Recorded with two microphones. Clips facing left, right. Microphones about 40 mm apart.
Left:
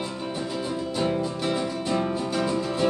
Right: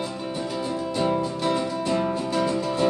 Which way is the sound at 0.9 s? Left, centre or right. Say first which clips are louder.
Right 2 dB; centre.